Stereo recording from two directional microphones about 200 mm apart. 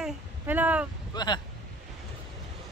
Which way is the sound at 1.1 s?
20° left (ahead or behind).